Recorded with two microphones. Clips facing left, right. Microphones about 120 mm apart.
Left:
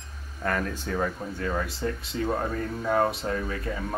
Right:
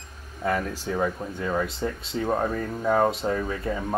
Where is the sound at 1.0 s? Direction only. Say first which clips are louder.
Right 2 dB; 20° right (ahead or behind).